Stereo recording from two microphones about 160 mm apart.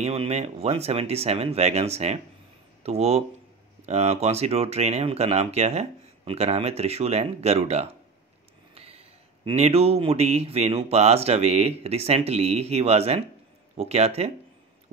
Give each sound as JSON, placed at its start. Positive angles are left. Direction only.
{"t": 0.0, "sound": "speech", "side_deg": -40}